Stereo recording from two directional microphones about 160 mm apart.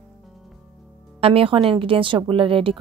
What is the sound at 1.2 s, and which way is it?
Speech, 35° right (ahead or behind).